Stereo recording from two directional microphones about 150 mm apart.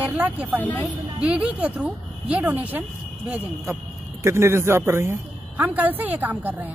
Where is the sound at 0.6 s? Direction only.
10° left (ahead or behind).